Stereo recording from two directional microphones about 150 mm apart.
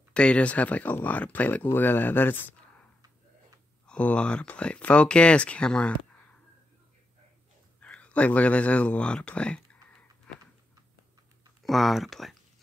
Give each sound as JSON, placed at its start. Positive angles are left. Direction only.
{"t": 0.1, "sound": "speech", "side_deg": 5}
{"t": 3.8, "sound": "speech", "side_deg": 10}
{"t": 7.8, "sound": "speech", "side_deg": 10}
{"t": 11.6, "sound": "speech", "side_deg": 0}